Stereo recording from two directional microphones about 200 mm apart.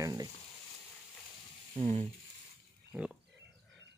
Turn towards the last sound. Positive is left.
turn(degrees=-5)  # may be behind; listen again after turning